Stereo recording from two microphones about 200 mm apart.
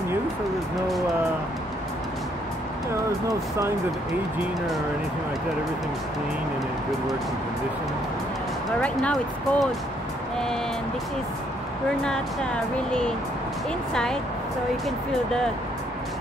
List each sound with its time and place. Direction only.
2.9 s vehicle: 15° right (ahead or behind)
8.8 s speech: 5° left (ahead or behind)